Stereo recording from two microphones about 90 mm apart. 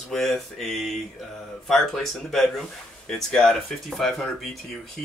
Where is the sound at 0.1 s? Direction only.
Centre (ahead or behind).